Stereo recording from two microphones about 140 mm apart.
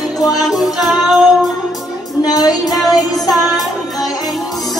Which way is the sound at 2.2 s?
25° left (ahead or behind).